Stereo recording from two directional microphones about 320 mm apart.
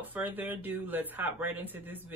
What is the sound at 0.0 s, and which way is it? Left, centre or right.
A woman's voice, centre.